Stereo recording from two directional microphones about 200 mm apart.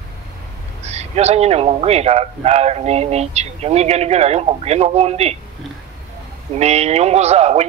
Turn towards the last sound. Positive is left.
turn(degrees=-30)  # may be behind; listen again after turning